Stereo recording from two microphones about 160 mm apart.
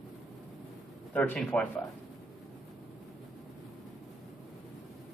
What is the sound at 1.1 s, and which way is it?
Speech, 10° left (ahead or behind).